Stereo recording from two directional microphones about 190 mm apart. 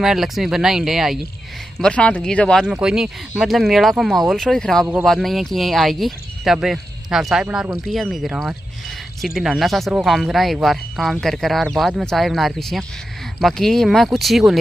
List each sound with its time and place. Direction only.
0.0 s speech: centre (ahead or behind)